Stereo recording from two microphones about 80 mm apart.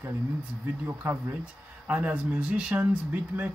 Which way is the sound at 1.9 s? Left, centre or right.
Centre.